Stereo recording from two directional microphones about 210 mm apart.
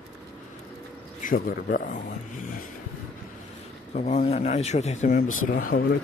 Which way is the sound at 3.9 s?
35° left (ahead or behind).